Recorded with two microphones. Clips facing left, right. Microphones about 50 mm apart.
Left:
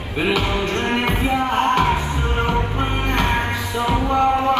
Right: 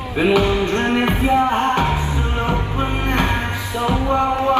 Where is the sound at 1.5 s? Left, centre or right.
Left.